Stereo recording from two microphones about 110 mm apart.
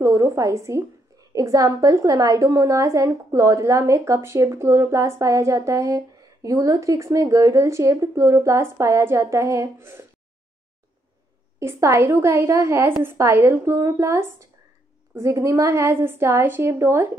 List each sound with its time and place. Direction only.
0.0 s a woman's voice: 30° right (ahead or behind)
11.6 s a woman's voice: 20° right (ahead or behind)